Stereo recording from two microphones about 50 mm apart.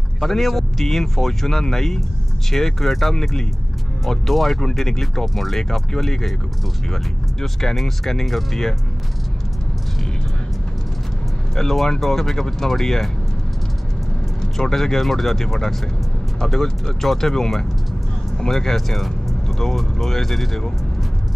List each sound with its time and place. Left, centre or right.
0.2 s speech: centre
7.6 s speech: centre
11.5 s speech: centre
14.4 s speech: centre